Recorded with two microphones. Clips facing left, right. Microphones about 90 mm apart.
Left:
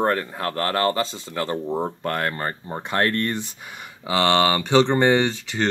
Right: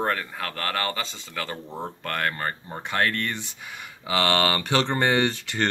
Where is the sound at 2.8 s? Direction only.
35° left (ahead or behind).